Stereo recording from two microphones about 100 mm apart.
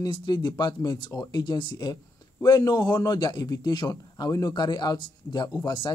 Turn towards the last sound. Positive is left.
turn(degrees=55)  # may be behind; listen again after turning